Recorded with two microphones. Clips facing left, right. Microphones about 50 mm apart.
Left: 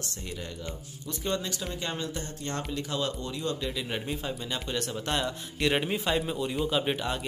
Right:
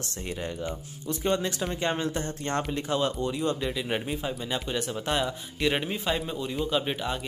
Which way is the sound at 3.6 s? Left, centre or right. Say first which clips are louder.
Right 3 dB; centre.